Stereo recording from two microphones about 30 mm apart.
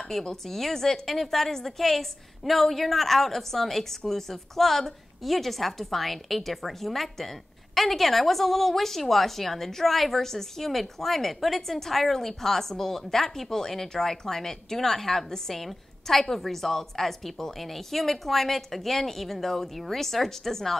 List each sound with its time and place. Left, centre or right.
0.2 s a woman's voice: left